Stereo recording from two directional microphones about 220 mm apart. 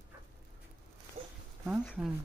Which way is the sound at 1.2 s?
40° right (ahead or behind).